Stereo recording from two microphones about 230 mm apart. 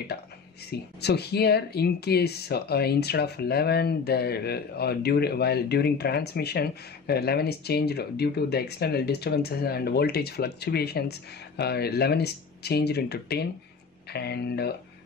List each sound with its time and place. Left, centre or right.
0.7 s speech: left